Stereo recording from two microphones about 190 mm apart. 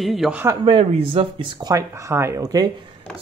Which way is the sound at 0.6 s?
30° right (ahead or behind).